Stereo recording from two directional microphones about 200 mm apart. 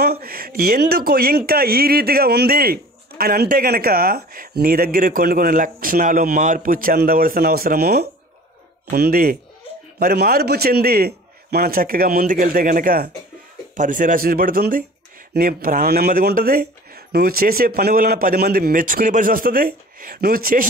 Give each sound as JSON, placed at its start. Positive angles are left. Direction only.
{"t": 0.0, "sound": "speech", "side_deg": -50}